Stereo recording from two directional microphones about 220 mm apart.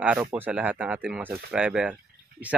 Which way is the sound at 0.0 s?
5° right (ahead or behind).